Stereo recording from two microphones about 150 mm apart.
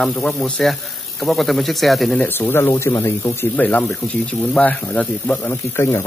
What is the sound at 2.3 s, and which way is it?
Speech, 15° left (ahead or behind).